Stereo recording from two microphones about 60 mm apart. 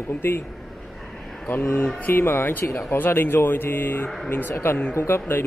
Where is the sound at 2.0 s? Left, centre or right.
Left.